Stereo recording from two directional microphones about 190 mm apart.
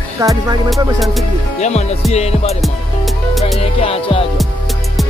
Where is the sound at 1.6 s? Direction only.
35° left (ahead or behind).